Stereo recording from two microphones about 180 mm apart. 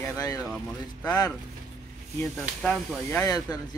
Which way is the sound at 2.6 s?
10° left (ahead or behind).